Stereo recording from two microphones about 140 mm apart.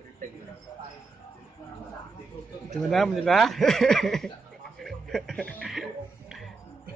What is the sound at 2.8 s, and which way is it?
Speech, centre (ahead or behind).